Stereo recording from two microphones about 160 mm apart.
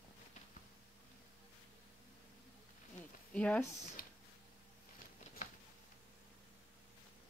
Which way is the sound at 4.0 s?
65° left (ahead or behind).